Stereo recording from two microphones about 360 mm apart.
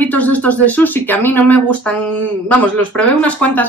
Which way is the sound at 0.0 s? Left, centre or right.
Centre.